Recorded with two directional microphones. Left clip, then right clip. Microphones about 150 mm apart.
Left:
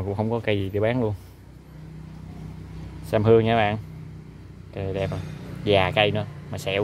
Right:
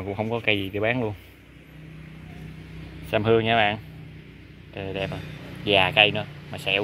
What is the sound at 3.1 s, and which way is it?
Speech, 20° left (ahead or behind).